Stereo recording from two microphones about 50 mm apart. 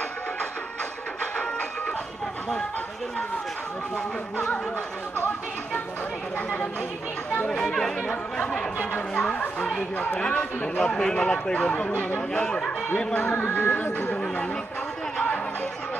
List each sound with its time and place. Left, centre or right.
7.4 s speech: centre
8.9 s music: left
10.2 s speech: left
12.5 s speech: centre
13.3 s music: left